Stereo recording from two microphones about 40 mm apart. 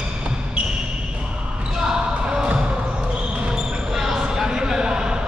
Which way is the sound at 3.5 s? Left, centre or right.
Centre.